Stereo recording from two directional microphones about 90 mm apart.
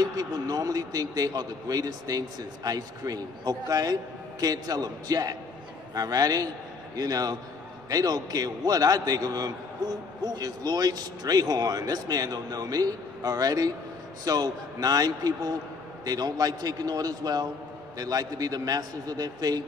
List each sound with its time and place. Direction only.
0.0 s a man's voice: 45° right (ahead or behind)